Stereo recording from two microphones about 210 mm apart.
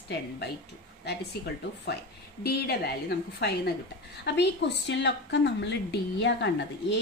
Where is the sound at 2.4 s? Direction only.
50° left (ahead or behind).